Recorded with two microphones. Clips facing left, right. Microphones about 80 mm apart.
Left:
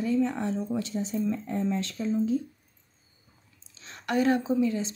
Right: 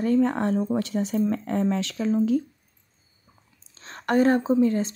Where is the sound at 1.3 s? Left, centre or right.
Right.